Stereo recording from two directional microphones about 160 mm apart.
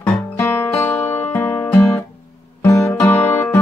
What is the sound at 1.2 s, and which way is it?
Music, 15° left (ahead or behind).